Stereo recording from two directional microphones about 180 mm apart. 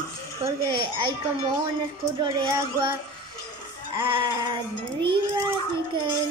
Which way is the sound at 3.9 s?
30° right (ahead or behind).